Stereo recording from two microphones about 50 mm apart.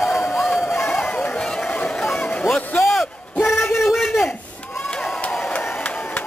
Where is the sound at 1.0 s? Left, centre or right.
Left.